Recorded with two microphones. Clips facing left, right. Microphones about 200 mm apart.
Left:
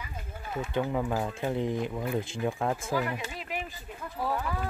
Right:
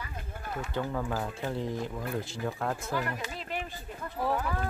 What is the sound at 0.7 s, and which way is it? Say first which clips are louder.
Speech: left 4 dB; 15° left (ahead or behind).